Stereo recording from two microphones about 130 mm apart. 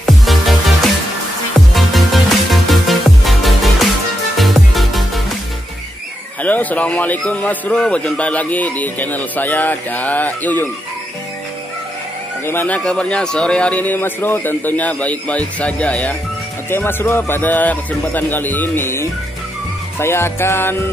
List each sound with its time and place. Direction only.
0.2 s music: centre (ahead or behind)
6.4 s a man's voice: 10° left (ahead or behind)
12.4 s a man's voice: 15° left (ahead or behind)
20.0 s music: 20° left (ahead or behind)